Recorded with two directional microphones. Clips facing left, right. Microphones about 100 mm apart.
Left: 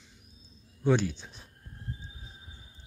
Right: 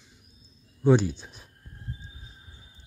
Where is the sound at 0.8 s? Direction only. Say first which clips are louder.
Right 5 dB; 15° right (ahead or behind).